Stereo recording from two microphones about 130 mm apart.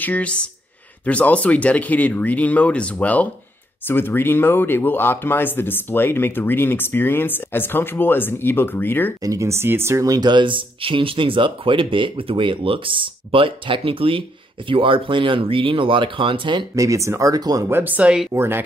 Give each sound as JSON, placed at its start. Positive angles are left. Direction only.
{"t": 0.0, "sound": "speech", "side_deg": 10}
{"t": 9.2, "sound": "speech", "side_deg": -25}
{"t": 16.7, "sound": "speech", "side_deg": -25}
{"t": 17.6, "sound": "speech", "side_deg": -15}
{"t": 18.3, "sound": "speech", "side_deg": -20}